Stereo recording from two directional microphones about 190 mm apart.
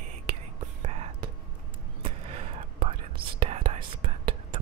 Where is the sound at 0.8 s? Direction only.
35° right (ahead or behind).